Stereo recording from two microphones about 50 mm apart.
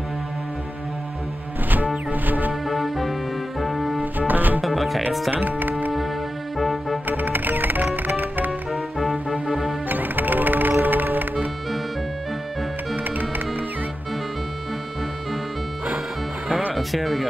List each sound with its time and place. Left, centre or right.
2.0 s music: right
2.6 s music: centre
4.0 s music: right
4.6 s music: centre
5.3 s speech: right
6.6 s music: centre
7.1 s music: right
8.7 s music: centre
9.8 s music: right
16.7 s speech: centre